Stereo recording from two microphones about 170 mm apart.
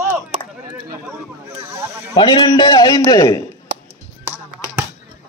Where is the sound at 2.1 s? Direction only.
25° left (ahead or behind).